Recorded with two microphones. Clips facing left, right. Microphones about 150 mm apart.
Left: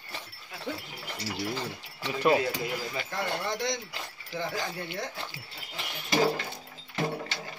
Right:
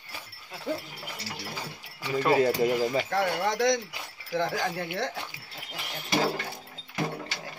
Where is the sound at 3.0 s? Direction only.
70° right (ahead or behind).